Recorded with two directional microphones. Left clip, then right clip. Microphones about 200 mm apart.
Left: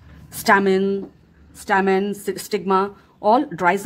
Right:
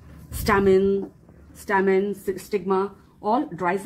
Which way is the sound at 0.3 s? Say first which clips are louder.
Left 3 dB; 35° left (ahead or behind).